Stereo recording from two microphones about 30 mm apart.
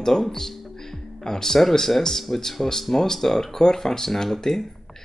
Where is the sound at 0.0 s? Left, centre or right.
Centre.